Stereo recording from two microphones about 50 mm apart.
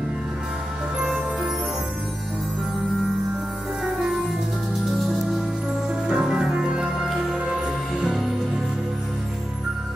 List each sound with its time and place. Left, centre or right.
3.8 s music: centre
6.0 s music: centre
7.0 s music: centre